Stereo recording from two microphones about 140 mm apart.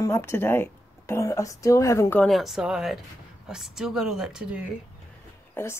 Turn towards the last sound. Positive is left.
turn(degrees=15)  # may be behind; listen again after turning